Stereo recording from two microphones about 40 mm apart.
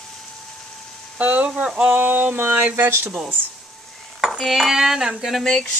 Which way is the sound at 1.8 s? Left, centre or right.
Right.